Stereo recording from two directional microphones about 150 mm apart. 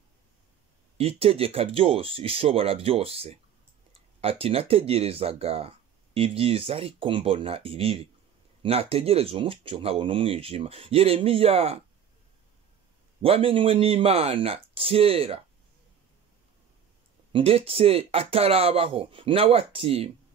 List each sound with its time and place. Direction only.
0.9 s speech: 40° right (ahead or behind)
13.2 s speech: 40° right (ahead or behind)
17.3 s speech: 40° right (ahead or behind)